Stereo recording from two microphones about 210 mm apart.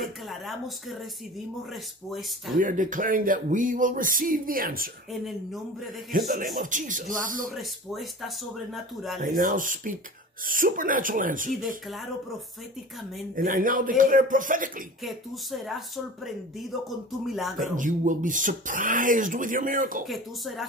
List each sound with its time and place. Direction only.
0.0 s speech: centre (ahead or behind)
2.5 s speech: 40° right (ahead or behind)
5.1 s speech: centre (ahead or behind)
6.1 s speech: 40° right (ahead or behind)
7.5 s speech: centre (ahead or behind)
9.2 s speech: 40° right (ahead or behind)
11.9 s speech: centre (ahead or behind)
13.4 s speech: 40° right (ahead or behind)
15.0 s speech: centre (ahead or behind)
17.6 s speech: 40° right (ahead or behind)
20.1 s speech: centre (ahead or behind)